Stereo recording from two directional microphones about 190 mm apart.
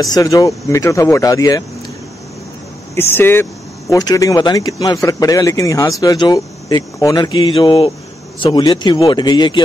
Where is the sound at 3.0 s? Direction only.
10° left (ahead or behind).